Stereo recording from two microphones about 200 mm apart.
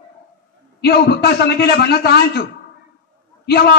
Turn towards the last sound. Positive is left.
turn(degrees=50)  # may be behind; listen again after turning